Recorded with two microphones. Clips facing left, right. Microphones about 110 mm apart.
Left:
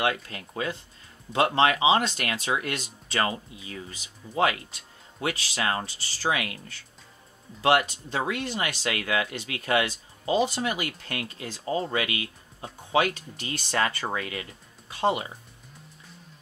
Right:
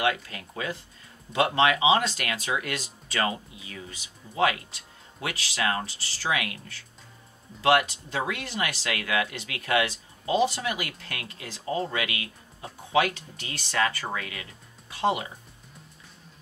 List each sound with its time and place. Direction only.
0.0 s speech: 30° left (ahead or behind)
5.2 s speech: 30° left (ahead or behind)
7.6 s speech: 35° left (ahead or behind)